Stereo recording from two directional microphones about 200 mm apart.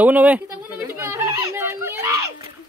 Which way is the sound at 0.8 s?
10° right (ahead or behind).